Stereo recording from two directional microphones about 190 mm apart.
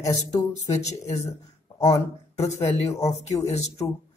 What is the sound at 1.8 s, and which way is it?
Speech, 35° left (ahead or behind).